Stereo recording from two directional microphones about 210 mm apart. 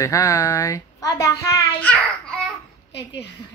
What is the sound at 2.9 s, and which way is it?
Speech, 55° left (ahead or behind).